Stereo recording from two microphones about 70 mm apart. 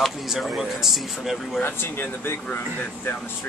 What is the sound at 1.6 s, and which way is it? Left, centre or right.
Speech, left.